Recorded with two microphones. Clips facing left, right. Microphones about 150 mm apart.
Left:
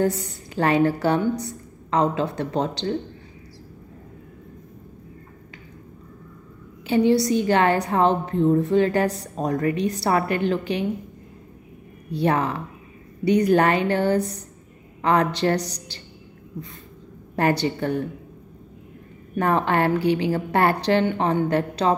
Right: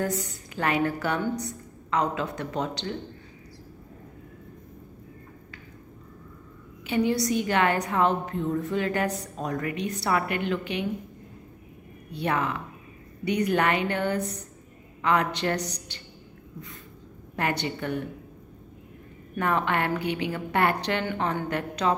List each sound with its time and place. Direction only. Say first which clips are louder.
0.6 s a woman's voice: left 6 dB; 30° left (ahead or behind)
6.9 s a woman's voice: left 6 dB; 30° left (ahead or behind)
12.1 s a woman's voice: left 6 dB; 35° left (ahead or behind)
17.4 s a woman's voice: left 7 dB; 35° left (ahead or behind)
19.3 s a woman's voice: left 5 dB; 35° left (ahead or behind)